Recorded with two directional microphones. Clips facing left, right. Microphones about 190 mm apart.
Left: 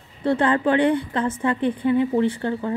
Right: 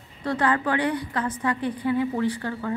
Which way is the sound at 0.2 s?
25° left (ahead or behind).